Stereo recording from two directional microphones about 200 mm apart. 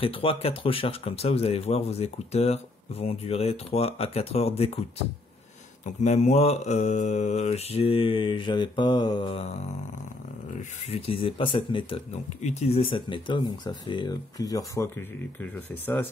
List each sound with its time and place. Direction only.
0.0 s speech: 25° left (ahead or behind)
5.9 s speech: 35° left (ahead or behind)
10.6 s speech: 30° left (ahead or behind); by 16.1 s 10° left (ahead or behind)